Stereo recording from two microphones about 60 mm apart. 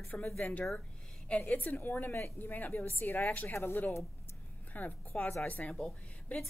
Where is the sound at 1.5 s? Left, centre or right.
Left.